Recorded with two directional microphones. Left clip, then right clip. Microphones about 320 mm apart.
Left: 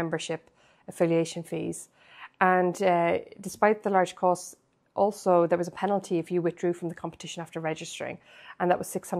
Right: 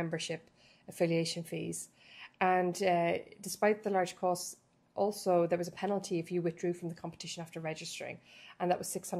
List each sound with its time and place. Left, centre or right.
0.0 s a woman's voice: centre